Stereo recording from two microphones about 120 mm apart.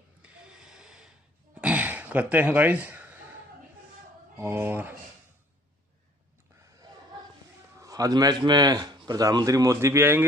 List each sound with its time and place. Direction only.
0.2 s a sound: 5° right (ahead or behind)
4.4 s speech: 20° right (ahead or behind)
7.8 s speech: 30° right (ahead or behind)